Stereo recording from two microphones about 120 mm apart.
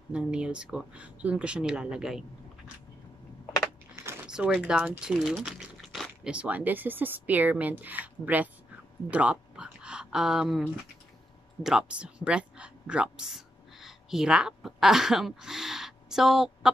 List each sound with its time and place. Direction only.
0.1 s speech: 10° right (ahead or behind)
3.9 s a sound: 20° right (ahead or behind)
4.3 s speech: 10° right (ahead or behind)
6.3 s speech: 10° right (ahead or behind)
9.1 s a sound: 10° right (ahead or behind)
11.6 s speech: 5° right (ahead or behind)